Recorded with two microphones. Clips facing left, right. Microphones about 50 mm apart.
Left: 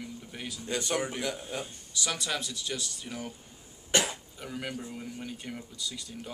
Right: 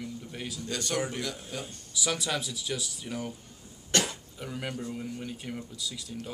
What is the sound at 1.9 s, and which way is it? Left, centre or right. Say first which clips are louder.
Speech: right 2 dB; centre.